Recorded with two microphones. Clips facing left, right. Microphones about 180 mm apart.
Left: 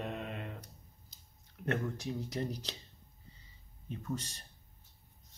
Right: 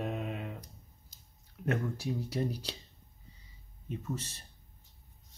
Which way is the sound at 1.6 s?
10° right (ahead or behind).